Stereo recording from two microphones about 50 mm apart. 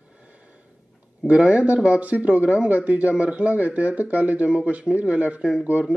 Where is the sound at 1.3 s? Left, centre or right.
Right.